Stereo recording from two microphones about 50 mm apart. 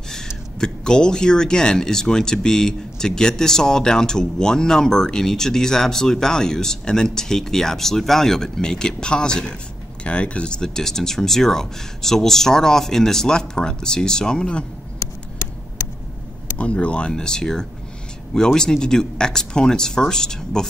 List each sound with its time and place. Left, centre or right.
0.6 s speech: centre
16.5 s speech: left